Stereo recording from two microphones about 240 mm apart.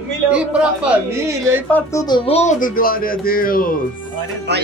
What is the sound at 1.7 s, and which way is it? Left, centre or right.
Speech, centre.